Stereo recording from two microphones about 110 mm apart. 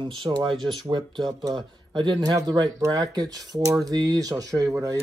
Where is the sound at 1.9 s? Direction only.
45° right (ahead or behind).